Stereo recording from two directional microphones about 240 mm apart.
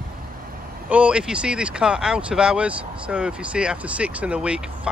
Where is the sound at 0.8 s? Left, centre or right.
Centre.